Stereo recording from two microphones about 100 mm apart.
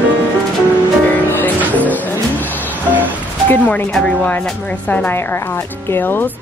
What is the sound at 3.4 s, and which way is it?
Speech, 15° left (ahead or behind).